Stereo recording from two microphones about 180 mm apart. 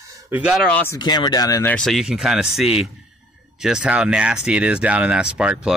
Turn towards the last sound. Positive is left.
turn(degrees=-5)  # may be behind; listen again after turning